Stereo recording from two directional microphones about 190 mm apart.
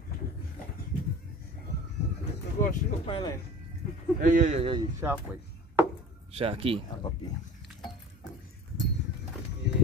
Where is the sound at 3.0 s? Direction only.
30° left (ahead or behind).